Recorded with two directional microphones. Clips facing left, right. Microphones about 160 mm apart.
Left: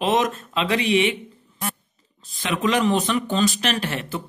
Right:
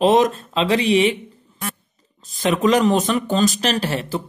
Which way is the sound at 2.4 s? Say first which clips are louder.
Right 5 dB; 40° right (ahead or behind).